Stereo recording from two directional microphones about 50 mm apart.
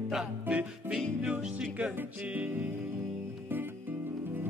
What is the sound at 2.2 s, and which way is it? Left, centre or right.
Music, right.